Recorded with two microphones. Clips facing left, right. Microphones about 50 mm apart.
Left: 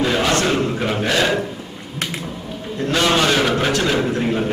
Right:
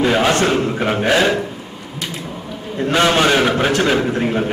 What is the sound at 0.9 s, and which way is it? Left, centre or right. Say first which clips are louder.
Speech: right 5 dB; centre.